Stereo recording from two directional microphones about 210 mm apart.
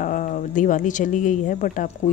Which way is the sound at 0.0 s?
35° left (ahead or behind).